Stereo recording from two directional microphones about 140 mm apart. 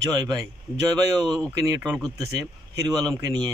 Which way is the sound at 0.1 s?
30° right (ahead or behind).